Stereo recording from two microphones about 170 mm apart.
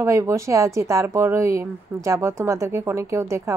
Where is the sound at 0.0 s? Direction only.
15° right (ahead or behind).